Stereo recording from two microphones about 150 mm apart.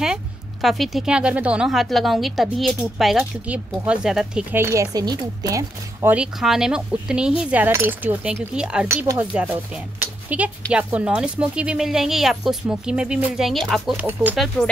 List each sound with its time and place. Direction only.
0.0 s a woman's voice: 5° right (ahead or behind); by 6.0 s 25° right (ahead or behind)
6.0 s speech: 5° right (ahead or behind)
8.8 s speech: 20° right (ahead or behind)
9.3 s a woman's voice: 10° right (ahead or behind)